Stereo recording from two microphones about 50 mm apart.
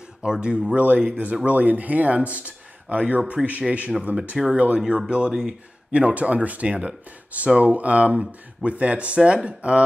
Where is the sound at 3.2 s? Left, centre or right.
Centre.